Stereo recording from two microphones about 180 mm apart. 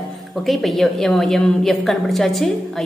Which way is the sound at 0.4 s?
Centre (ahead or behind).